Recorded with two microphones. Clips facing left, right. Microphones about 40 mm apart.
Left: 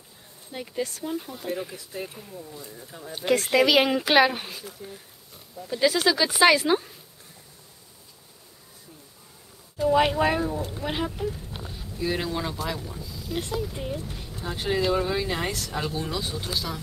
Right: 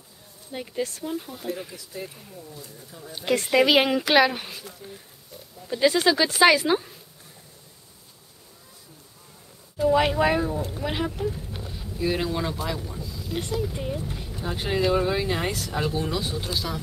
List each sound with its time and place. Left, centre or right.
0.5 s speech: centre
1.9 s speech: left
2.1 s speech: centre
2.9 s speech: left
3.6 s speech: centre
3.9 s speech: centre
6.2 s speech: centre
9.8 s speech: centre